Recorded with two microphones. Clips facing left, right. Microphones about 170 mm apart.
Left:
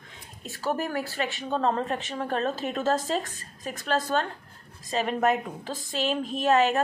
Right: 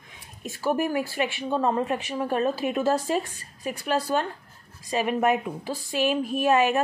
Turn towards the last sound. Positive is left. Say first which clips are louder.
# right 1 dB
turn(degrees=-15)  # may be behind; listen again after turning